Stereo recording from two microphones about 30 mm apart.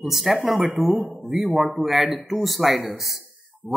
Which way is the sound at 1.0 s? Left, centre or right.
Right.